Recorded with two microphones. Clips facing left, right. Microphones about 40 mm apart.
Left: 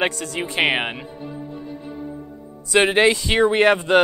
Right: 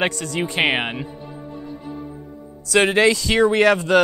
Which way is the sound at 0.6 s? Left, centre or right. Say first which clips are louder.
Left 1 dB; centre.